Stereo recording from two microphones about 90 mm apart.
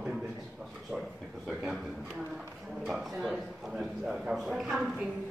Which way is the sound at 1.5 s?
5° right (ahead or behind).